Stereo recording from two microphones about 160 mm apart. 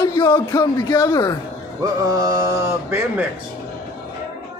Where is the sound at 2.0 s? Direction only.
20° right (ahead or behind).